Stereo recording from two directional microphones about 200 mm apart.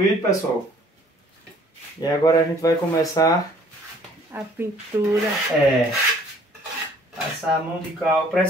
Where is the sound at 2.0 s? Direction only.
20° left (ahead or behind).